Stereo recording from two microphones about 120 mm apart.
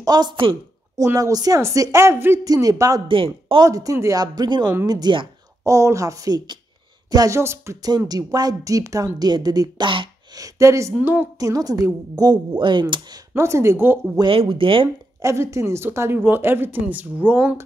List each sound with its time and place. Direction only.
0.0 s a woman's voice: 35° right (ahead or behind)
0.9 s a woman's voice: 25° right (ahead or behind)
2.4 s a woman's voice: 30° right (ahead or behind)
3.1 s speech: 45° right (ahead or behind)
3.6 s a woman's voice: 30° right (ahead or behind)
5.7 s a woman's voice: 25° right (ahead or behind)
10.4 s a woman's voice: 25° right (ahead or behind)
11.0 s a woman's voice: 15° right (ahead or behind)
11.3 s a woman's voice: 30° right (ahead or behind)
13.3 s a woman's voice: 20° right (ahead or behind)
14.3 s speech: 50° right (ahead or behind)
15.2 s a woman's voice: 25° right (ahead or behind)